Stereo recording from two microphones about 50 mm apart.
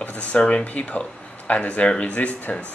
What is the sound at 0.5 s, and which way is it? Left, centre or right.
Speech, left.